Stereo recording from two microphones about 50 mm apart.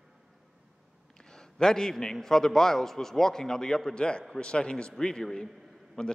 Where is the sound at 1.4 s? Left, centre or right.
Centre.